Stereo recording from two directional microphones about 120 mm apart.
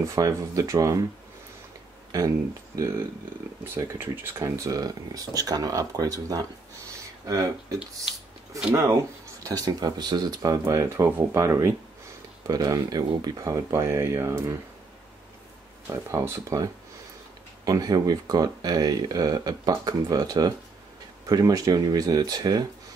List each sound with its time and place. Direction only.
0.0 s speech: 25° right (ahead or behind)
2.1 s speech: 25° right (ahead or behind)
6.9 s a sound: 25° right (ahead or behind)
8.7 s speech: 25° right (ahead or behind)
10.6 s speech: 25° right (ahead or behind)
15.9 s speech: 20° right (ahead or behind)